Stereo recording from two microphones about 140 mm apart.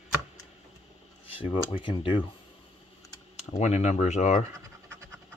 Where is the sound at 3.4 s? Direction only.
55° left (ahead or behind).